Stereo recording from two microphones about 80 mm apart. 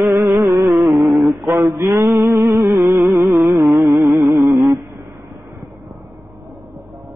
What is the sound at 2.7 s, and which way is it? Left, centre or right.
Music, right.